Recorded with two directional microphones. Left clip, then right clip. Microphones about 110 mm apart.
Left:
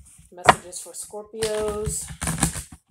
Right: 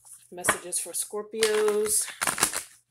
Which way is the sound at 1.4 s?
30° left (ahead or behind).